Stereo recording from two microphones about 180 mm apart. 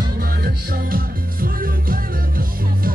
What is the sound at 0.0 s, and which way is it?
Music, 60° right (ahead or behind).